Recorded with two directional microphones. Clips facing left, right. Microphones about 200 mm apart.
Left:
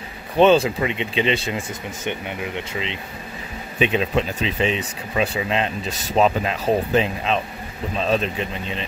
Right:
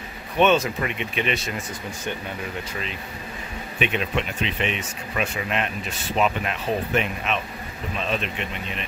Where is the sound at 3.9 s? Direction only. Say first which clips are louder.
Left 5 dB; 30° left (ahead or behind).